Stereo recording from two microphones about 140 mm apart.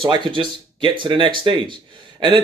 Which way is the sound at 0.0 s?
35° right (ahead or behind).